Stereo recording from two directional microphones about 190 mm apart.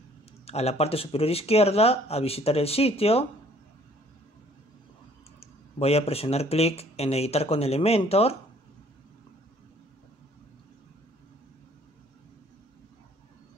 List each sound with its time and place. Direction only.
0.5 s speech: 35° left (ahead or behind)
5.4 s speech: 30° left (ahead or behind)